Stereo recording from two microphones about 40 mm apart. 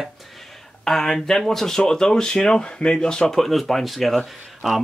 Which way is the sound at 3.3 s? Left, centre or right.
Centre.